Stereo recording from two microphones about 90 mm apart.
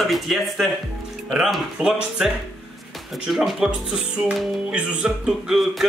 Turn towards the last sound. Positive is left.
turn(degrees=-5)  # may be behind; listen again after turning